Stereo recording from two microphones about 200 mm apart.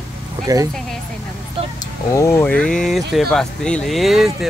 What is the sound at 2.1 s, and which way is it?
Speech, 15° left (ahead or behind).